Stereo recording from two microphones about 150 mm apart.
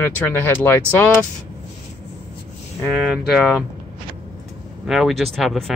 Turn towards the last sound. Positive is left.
turn(degrees=0)  # may be behind; listen again after turning